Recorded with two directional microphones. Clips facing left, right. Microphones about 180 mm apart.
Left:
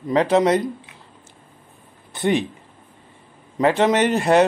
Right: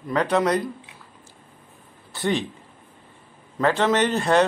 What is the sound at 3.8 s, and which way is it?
Speech, 15° left (ahead or behind).